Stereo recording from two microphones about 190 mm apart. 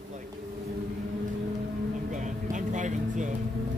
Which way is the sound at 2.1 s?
40° right (ahead or behind).